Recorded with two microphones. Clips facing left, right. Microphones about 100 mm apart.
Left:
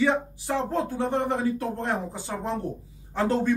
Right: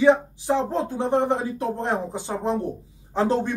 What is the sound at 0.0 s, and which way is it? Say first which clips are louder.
Speech: right 6 dB; 20° right (ahead or behind).